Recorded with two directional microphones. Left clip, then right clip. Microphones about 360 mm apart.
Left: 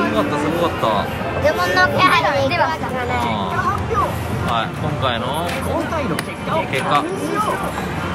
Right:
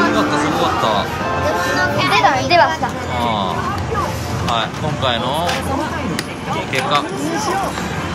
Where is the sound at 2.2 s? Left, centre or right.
Right.